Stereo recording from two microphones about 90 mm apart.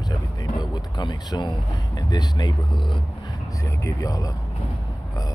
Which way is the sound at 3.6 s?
40° left (ahead or behind).